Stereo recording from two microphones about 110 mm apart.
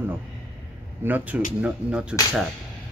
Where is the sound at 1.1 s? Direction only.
10° right (ahead or behind).